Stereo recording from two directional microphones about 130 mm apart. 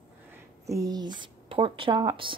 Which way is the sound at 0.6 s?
25° right (ahead or behind).